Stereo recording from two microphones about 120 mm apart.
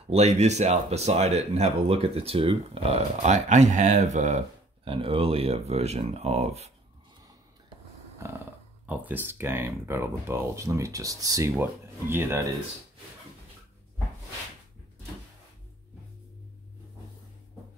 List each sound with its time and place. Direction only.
0.1 s speech: 65° right (ahead or behind)
4.8 s speech: 50° right (ahead or behind)
8.8 s speech: 15° right (ahead or behind)
11.5 s speech: 15° right (ahead or behind)